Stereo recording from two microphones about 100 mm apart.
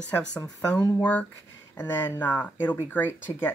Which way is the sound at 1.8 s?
20° left (ahead or behind).